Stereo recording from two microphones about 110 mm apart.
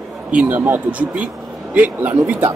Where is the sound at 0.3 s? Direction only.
15° right (ahead or behind).